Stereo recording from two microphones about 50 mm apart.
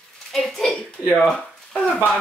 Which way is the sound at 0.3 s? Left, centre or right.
Centre.